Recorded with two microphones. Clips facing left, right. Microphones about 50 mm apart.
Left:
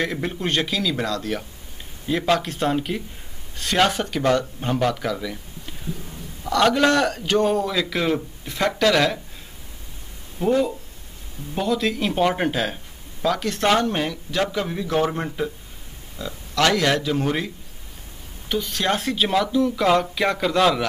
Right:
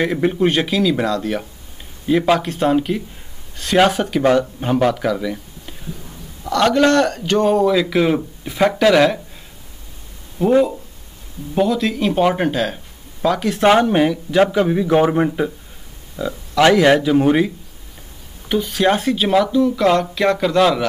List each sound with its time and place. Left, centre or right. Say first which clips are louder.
0.0 s a man's voice: right 8 dB; centre
6.4 s a man's voice: right 3 dB; centre
10.4 s a man's voice: right 6 dB; centre
18.5 s a man's voice: right 6 dB; centre